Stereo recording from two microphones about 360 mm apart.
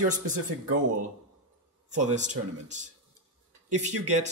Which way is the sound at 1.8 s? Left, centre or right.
Centre.